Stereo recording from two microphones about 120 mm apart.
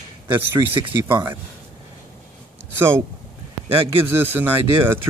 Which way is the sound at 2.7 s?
20° right (ahead or behind).